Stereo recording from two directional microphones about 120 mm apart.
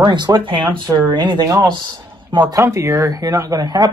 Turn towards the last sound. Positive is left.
turn(degrees=-30)  # may be behind; listen again after turning